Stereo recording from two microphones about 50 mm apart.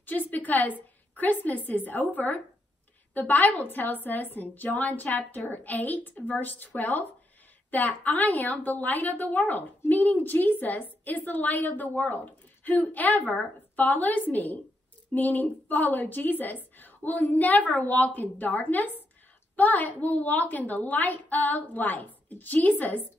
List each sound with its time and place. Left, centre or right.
0.0 s a woman's voice: left